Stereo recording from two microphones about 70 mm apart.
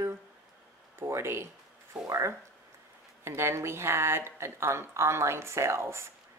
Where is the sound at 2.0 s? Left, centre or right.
Right.